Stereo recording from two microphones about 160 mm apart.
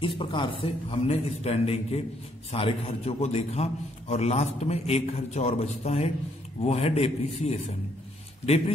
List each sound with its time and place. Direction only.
0.0 s a man's voice: 30° left (ahead or behind)